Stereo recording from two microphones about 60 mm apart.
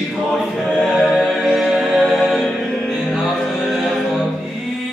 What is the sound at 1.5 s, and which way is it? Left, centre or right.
Music, centre.